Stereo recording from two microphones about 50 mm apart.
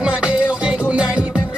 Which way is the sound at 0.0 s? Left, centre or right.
Centre.